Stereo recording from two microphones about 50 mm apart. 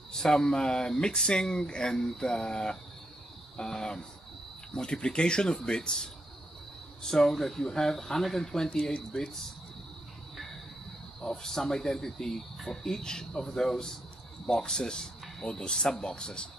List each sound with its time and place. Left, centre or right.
0.1 s speech: centre
11.1 s speech: centre